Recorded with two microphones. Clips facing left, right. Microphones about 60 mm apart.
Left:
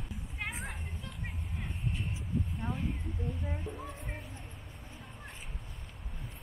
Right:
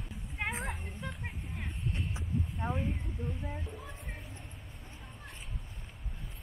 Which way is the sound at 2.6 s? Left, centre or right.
Centre.